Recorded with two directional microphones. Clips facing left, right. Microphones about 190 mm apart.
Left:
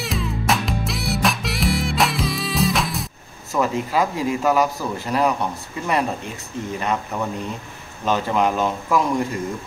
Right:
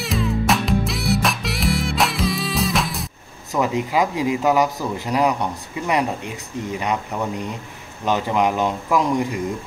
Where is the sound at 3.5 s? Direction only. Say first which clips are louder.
Right 1 dB; 15° right (ahead or behind).